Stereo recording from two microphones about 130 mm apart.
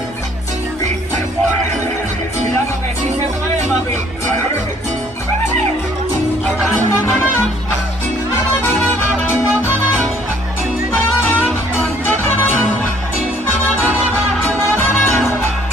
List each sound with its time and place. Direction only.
15.0 s music: 15° left (ahead or behind)